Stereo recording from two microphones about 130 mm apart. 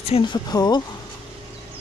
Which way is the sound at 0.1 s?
50° left (ahead or behind).